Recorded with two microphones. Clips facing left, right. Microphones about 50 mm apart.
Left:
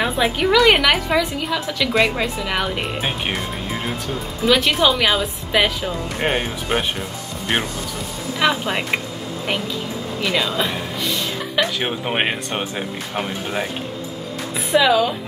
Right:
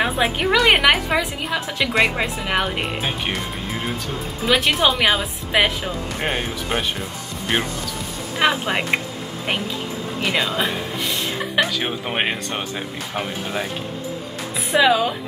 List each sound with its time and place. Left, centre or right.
0.0 s a woman's voice: centre
4.5 s a woman's voice: centre
5.9 s speech: centre
8.4 s a woman's voice: centre
10.2 s music: centre
11.8 s speech: centre
14.7 s a woman's voice: centre